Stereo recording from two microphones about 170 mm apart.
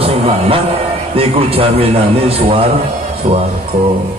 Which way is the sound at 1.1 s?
35° right (ahead or behind).